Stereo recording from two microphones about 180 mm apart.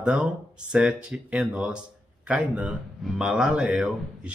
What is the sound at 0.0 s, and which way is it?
Speech, 5° right (ahead or behind).